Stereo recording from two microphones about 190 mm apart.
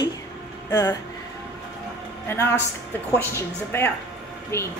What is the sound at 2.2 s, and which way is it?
A woman's voice, 10° left (ahead or behind).